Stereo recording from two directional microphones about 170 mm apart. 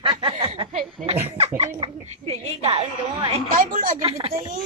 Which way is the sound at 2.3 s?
35° right (ahead or behind).